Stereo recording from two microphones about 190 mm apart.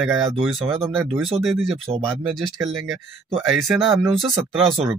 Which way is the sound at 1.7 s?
30° right (ahead or behind).